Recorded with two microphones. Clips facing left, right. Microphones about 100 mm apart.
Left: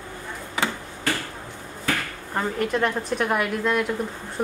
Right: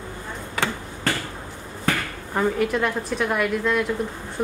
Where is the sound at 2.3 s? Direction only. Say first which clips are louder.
Right 3 dB; 5° right (ahead or behind).